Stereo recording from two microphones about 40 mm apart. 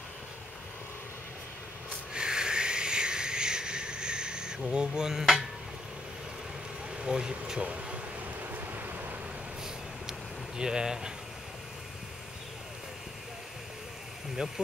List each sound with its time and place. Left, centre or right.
2.1 s a sound: centre
6.9 s speech: right
7.6 s air conditioning: right
8.5 s vehicle: right
10.6 s speech: centre